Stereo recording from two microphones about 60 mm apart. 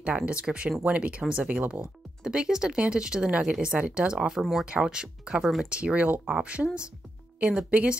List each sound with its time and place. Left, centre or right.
0.0 s speech: centre
4.4 s speech: centre
4.6 s speech: centre
5.4 s speech: centre
5.7 s speech: centre